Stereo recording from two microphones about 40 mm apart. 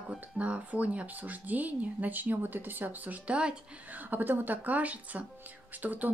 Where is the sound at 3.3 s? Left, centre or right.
Right.